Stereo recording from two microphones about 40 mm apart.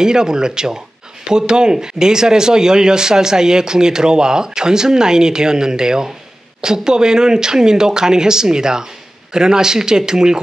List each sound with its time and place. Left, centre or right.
0.0 s speech: centre